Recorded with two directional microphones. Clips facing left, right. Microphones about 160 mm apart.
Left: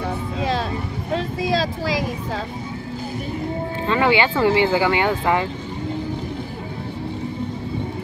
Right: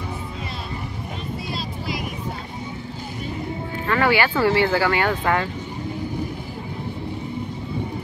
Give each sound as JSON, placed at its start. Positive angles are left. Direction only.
{"t": 0.4, "sound": "music", "side_deg": 90}
{"t": 3.8, "sound": "speech", "side_deg": 20}